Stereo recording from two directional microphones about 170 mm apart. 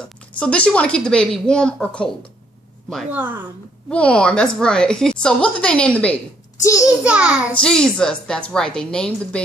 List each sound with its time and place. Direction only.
0.4 s speech: 5° left (ahead or behind)
3.1 s a child's voice: 10° right (ahead or behind)
3.9 s speech: 5° left (ahead or behind)
6.6 s a child's voice: 20° left (ahead or behind)
7.1 s a child's voice: 5° right (ahead or behind)
7.6 s speech: 5° left (ahead or behind)